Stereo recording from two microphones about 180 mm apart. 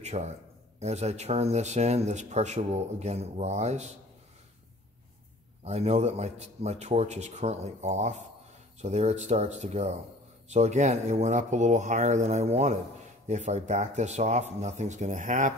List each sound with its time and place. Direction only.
0.0 s a sound: 40° right (ahead or behind)
0.7 s speech: 35° right (ahead or behind)
5.6 s speech: 35° right (ahead or behind)